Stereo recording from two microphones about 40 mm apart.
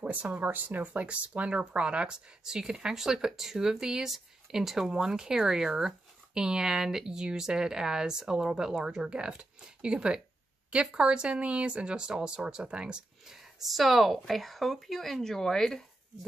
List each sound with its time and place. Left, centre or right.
0.0 s speech: right
0.4 s speech: right
13.3 s speech: centre